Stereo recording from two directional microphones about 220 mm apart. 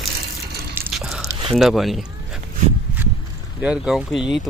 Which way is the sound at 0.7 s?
Centre (ahead or behind).